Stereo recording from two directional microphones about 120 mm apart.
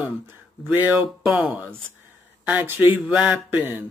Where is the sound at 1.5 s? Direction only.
15° right (ahead or behind).